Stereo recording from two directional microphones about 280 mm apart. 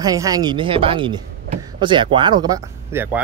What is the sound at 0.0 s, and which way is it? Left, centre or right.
Speech, centre.